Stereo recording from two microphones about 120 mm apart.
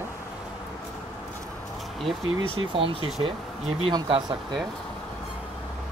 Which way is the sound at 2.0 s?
50° right (ahead or behind).